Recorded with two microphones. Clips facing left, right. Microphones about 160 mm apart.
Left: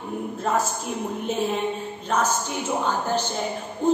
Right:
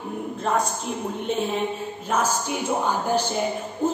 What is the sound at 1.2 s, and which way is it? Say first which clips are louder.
A woman's voice: even; centre (ahead or behind).